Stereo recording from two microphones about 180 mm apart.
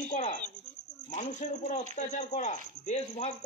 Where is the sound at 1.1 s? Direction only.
40° left (ahead or behind).